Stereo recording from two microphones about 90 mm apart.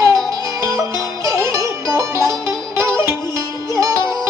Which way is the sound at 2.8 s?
35° right (ahead or behind).